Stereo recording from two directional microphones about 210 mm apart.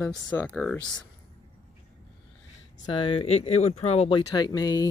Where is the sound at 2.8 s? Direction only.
25° left (ahead or behind).